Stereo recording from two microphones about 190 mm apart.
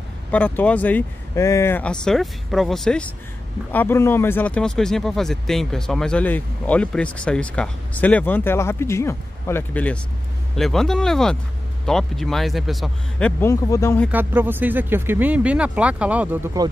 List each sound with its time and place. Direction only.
0.3 s a man's voice: 10° left (ahead or behind)
13.4 s speech: 15° left (ahead or behind)
14.1 s speech: 10° right (ahead or behind)
16.6 s speech: 20° right (ahead or behind)